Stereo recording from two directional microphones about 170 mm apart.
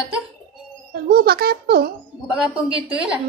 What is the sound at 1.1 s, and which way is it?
Speech, 65° right (ahead or behind).